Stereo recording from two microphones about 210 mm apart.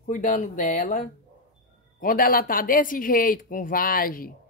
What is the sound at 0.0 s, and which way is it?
Speech, 40° left (ahead or behind).